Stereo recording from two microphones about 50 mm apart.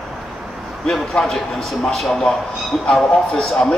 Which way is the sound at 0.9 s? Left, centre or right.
Centre.